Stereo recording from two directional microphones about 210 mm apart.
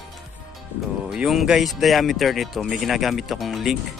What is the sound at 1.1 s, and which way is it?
Speech, centre (ahead or behind).